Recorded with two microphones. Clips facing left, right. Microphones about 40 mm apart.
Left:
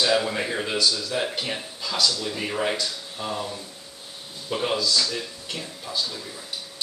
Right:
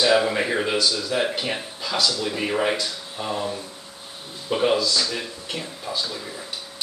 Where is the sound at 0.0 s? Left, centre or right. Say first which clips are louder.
Right 4 dB; centre.